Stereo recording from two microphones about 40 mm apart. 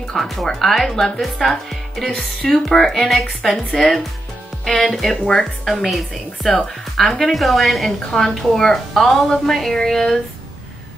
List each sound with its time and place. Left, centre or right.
0.0 s a woman's voice: centre
4.7 s a woman's voice: centre